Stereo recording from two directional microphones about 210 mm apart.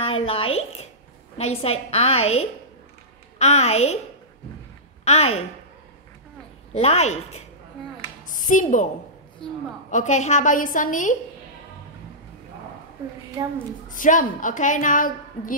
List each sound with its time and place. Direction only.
0.0 s a woman's voice: 25° left (ahead or behind)
5.0 s a woman's voice: 30° left (ahead or behind)
6.7 s a woman's voice: 30° left (ahead or behind)
9.4 s a woman's voice: 5° left (ahead or behind)
9.8 s a woman's voice: 35° left (ahead or behind)
13.4 s a woman's voice: 20° right (ahead or behind)
13.8 s a woman's voice: 40° left (ahead or behind)